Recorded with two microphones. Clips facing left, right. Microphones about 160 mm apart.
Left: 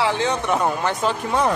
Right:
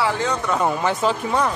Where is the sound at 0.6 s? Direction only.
Centre (ahead or behind).